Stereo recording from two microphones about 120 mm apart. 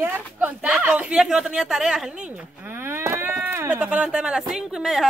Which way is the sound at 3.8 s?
10° right (ahead or behind).